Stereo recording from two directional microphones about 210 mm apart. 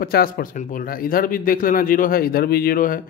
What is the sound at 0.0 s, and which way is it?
Speech, 45° left (ahead or behind).